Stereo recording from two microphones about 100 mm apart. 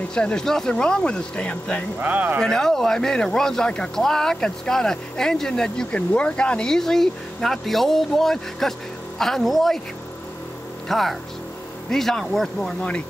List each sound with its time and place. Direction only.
0.1 s speech: 10° left (ahead or behind)
2.0 s speech: 15° right (ahead or behind)
2.4 s speech: 5° left (ahead or behind)
10.9 s speech: centre (ahead or behind)